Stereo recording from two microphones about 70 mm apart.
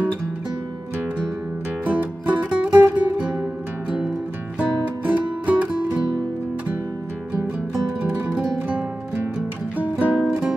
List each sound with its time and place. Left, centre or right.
1.9 s music: right
4.6 s music: right
8.6 s music: right